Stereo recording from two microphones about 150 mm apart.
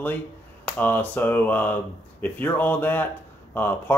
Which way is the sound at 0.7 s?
10° left (ahead or behind).